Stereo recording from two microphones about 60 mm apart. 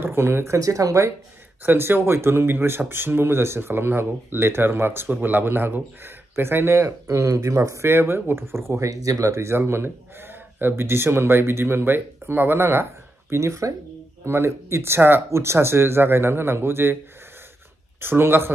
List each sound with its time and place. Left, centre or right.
0.0 s speech: right
0.6 s speech: right
1.6 s speech: right
7.8 s speech: right
8.6 s speech: right
9.6 s speech: right
13.3 s speech: right
14.2 s speech: right
15.2 s speech: right
18.0 s speech: right